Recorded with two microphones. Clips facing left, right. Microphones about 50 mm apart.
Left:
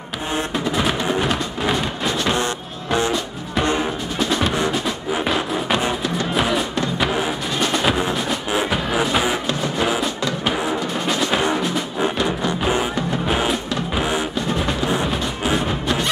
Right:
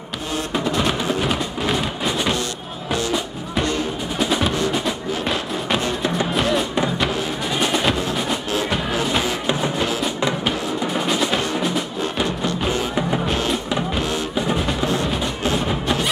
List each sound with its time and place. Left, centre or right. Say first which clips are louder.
0.5 s music: right 2 dB; centre
4.2 s music: even; centre
5.2 s music: left 4 dB; centre
9.8 s music: left 2 dB; centre
11.1 s music: left 1 dB; centre
12.4 s music: left 2 dB; centre